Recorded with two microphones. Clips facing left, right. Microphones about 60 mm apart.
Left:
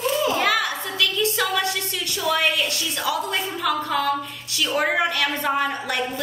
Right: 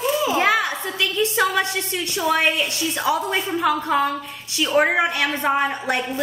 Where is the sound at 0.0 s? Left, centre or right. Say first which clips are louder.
Right 1 dB; centre.